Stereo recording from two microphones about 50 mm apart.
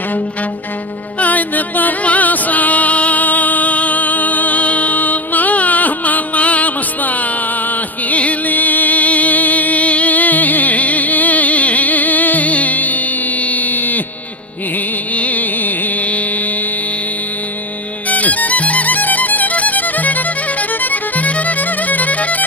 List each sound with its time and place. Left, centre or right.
1.2 s music: left
15.1 s music: left
18.1 s music: left